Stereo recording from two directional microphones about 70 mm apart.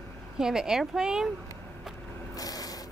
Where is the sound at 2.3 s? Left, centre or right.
Left.